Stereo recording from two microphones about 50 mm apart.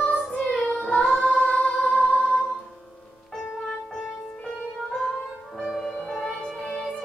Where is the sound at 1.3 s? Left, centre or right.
Left.